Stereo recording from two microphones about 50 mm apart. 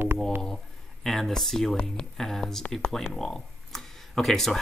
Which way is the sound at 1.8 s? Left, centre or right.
Centre.